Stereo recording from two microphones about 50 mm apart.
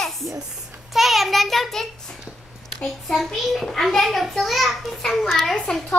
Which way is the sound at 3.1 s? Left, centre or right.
Centre.